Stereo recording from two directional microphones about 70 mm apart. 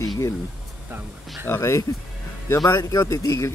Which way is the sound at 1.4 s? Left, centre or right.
Left.